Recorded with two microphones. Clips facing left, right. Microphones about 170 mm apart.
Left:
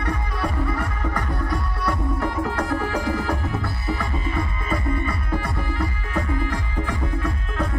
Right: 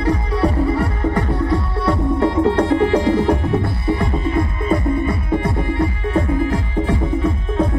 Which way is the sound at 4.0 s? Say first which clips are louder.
Right 7 dB; 20° right (ahead or behind).